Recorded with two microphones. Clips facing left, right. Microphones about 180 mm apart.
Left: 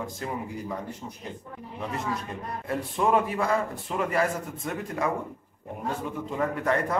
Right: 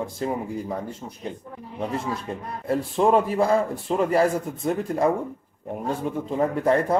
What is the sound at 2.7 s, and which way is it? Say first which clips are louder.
Speech: right 5 dB; 35° right (ahead or behind).